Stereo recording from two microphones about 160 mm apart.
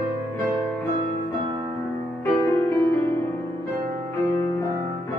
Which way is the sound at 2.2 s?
15° left (ahead or behind).